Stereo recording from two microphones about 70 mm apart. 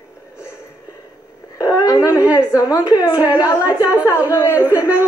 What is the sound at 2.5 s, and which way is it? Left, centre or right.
Speech, left.